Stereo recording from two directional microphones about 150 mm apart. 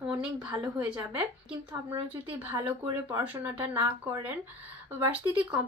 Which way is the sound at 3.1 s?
20° right (ahead or behind).